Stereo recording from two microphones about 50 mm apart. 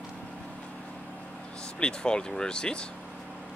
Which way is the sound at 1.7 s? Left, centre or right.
Centre.